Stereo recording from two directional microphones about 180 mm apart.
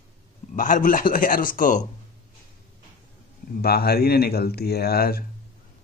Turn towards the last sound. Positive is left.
turn(degrees=60)  # may be behind; listen again after turning